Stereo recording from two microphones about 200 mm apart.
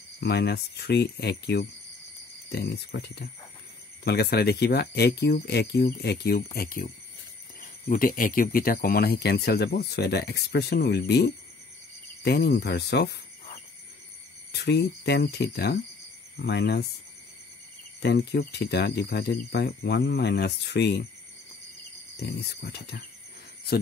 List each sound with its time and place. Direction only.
0.2 s speech: 55° left (ahead or behind)
14.5 s speech: 55° left (ahead or behind)
18.0 s speech: 55° left (ahead or behind)
22.2 s speech: 55° left (ahead or behind)